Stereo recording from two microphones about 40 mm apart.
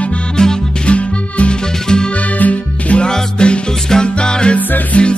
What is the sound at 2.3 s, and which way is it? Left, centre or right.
Music, left.